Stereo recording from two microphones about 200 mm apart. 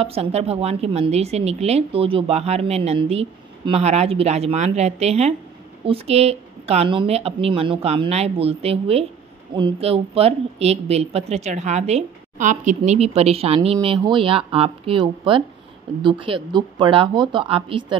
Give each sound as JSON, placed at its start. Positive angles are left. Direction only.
{"t": 0.0, "sound": "a woman's voice", "side_deg": -30}